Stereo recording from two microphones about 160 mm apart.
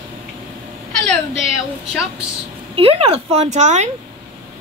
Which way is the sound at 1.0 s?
Centre (ahead or behind).